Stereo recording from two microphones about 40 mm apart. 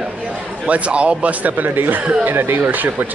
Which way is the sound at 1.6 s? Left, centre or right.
Right.